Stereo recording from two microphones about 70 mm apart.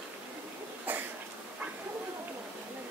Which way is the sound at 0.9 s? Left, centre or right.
Right.